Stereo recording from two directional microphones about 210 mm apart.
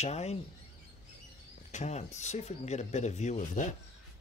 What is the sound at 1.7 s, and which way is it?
Speech, 35° left (ahead or behind).